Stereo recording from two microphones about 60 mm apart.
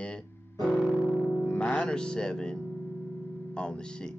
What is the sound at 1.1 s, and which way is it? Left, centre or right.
Music, left.